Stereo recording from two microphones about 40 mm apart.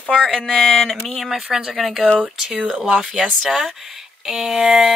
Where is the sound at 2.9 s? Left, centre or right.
Centre.